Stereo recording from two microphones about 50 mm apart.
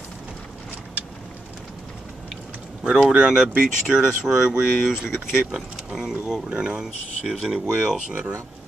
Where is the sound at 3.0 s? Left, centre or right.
Centre.